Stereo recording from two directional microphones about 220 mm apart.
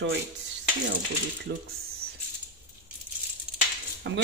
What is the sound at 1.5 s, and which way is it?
Speech, 45° right (ahead or behind).